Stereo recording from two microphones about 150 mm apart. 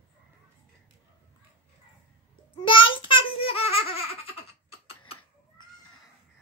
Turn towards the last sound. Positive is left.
turn(degrees=40)  # may be behind; listen again after turning